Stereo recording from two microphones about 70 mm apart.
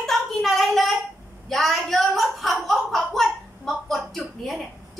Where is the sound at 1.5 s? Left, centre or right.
Centre.